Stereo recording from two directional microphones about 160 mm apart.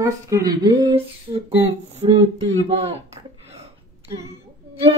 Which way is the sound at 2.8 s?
40° right (ahead or behind).